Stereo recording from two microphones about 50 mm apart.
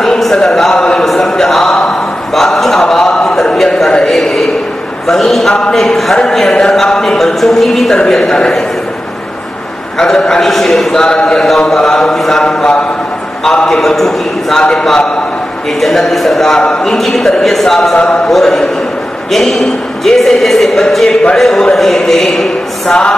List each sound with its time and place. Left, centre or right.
0.0 s a sound: centre
5.0 s a man's voice: centre
7.9 s a man's voice: centre
9.9 s a man's voice: centre
17.9 s a man's voice: left
18.3 s a man's voice: centre
22.8 s a man's voice: centre